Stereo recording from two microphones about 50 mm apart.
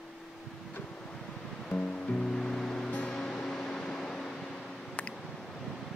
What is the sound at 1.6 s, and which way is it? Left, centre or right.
Music, centre.